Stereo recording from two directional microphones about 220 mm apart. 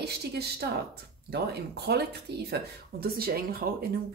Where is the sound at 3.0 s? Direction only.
45° right (ahead or behind).